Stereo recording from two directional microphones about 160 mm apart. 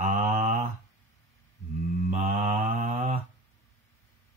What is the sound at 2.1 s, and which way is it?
Mantra, 45° right (ahead or behind).